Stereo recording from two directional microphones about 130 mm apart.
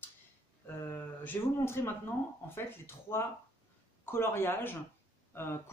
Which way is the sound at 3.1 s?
25° left (ahead or behind).